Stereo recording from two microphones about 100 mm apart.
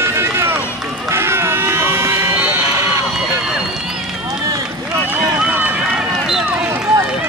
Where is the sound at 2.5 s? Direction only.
30° right (ahead or behind).